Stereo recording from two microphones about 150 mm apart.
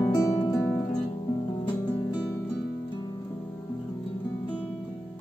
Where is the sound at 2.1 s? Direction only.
30° left (ahead or behind).